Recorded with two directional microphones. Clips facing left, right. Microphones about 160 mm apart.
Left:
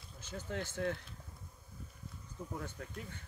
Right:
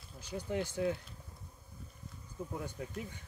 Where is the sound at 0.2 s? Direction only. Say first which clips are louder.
Right 5 dB; 15° right (ahead or behind).